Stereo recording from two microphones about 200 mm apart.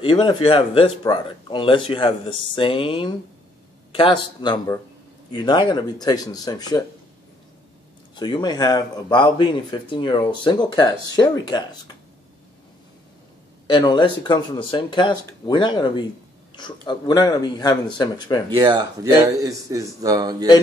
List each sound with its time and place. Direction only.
0.0 s speech: 25° left (ahead or behind)
8.2 s speech: 20° left (ahead or behind)
13.7 s speech: 20° left (ahead or behind)
18.6 s speech: 20° right (ahead or behind)